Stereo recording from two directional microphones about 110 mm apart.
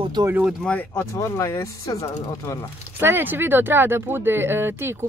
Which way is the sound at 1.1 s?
25° left (ahead or behind).